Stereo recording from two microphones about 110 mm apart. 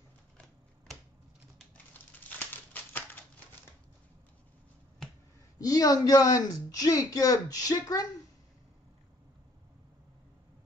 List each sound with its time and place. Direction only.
2.2 s crumpling: 15° left (ahead or behind)
5.6 s speech: 35° left (ahead or behind)